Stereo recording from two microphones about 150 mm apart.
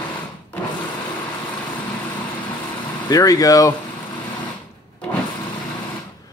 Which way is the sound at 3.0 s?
25° left (ahead or behind).